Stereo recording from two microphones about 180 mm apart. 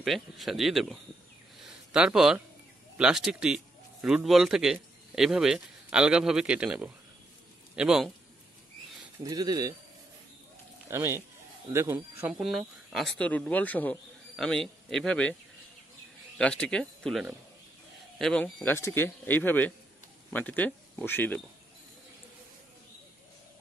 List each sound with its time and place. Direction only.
0.0 s a man's voice: centre (ahead or behind)
9.2 s speech: 20° right (ahead or behind)
10.9 s speech: 15° right (ahead or behind); by 15.3 s 5° left (ahead or behind)
16.3 s speech: 5° left (ahead or behind)